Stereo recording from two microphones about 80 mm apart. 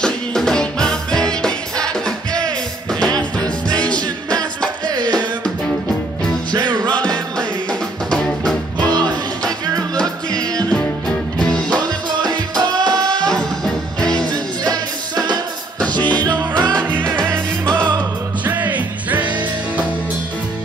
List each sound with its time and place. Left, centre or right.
0.0 s music: centre
4.8 s music: right
6.5 s music: right
6.9 s music: centre
10.4 s music: right
11.1 s music: centre
12.2 s music: right
13.3 s music: centre
14.3 s music: right
16.5 s music: centre
18.4 s music: right